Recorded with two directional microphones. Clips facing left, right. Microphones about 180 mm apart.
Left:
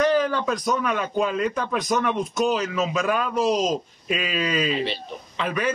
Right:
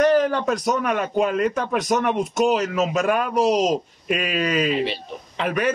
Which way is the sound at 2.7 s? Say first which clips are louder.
Right 3 dB; 45° right (ahead or behind).